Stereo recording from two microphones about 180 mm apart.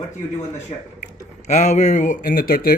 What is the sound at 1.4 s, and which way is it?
Speech, 40° left (ahead or behind).